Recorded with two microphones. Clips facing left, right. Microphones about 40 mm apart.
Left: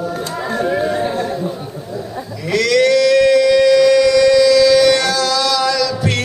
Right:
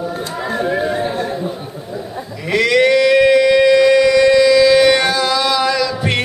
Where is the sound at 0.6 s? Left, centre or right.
Centre.